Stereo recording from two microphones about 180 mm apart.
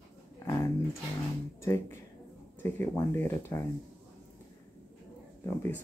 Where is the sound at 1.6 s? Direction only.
15° left (ahead or behind).